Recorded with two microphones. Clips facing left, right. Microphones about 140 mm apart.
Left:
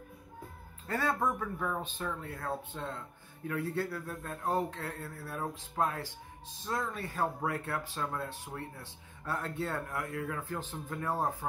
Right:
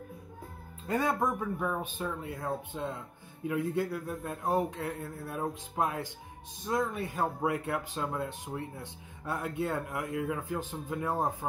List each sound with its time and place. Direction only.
0.8 s speech: 15° right (ahead or behind)